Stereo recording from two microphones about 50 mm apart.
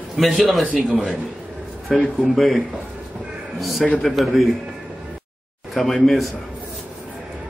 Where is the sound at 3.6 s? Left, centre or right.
Centre.